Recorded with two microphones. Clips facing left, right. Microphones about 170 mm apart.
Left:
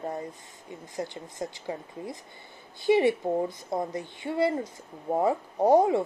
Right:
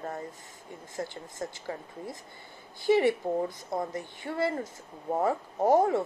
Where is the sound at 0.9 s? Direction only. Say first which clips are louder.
Left 2 dB; 20° left (ahead or behind).